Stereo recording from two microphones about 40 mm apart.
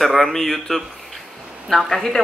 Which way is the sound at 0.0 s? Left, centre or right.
Centre.